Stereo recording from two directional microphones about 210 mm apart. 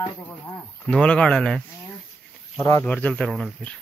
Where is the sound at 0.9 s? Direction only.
5° left (ahead or behind).